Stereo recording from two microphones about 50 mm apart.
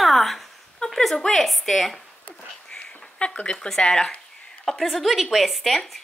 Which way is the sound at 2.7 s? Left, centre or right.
Left.